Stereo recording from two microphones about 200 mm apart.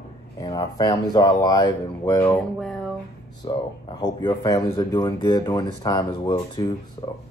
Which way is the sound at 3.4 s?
20° left (ahead or behind).